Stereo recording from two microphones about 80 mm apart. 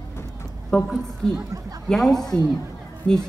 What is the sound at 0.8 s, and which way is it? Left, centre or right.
A woman's voice, centre.